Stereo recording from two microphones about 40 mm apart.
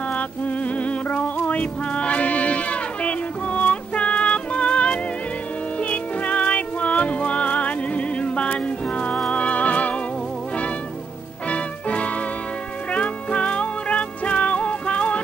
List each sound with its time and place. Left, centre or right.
0.1 s music: left
11.4 s music: left